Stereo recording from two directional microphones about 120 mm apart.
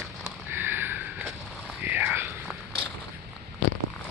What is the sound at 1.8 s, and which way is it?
Whispering, 15° right (ahead or behind).